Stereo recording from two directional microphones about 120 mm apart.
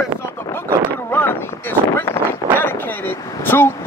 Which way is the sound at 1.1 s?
15° left (ahead or behind).